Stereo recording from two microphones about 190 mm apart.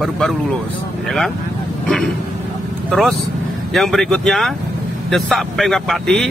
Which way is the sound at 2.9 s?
Centre (ahead or behind).